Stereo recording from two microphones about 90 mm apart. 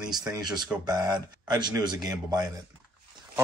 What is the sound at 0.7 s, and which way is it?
Speech, 20° right (ahead or behind).